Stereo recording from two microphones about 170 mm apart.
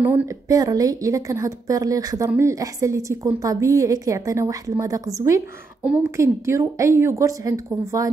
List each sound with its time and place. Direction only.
0.0 s a woman's voice: 15° right (ahead or behind)